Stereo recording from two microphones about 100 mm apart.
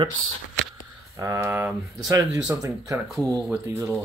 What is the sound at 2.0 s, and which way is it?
Speech, 30° right (ahead or behind).